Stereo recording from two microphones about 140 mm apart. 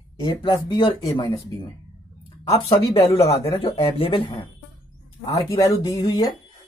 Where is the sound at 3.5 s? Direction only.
45° left (ahead or behind).